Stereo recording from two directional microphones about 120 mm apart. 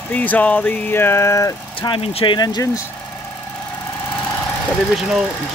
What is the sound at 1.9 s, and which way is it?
Speech, 50° left (ahead or behind).